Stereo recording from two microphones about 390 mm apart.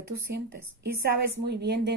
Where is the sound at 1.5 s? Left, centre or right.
Right.